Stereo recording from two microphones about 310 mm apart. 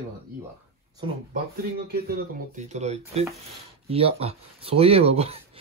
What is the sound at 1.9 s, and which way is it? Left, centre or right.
Speech, right.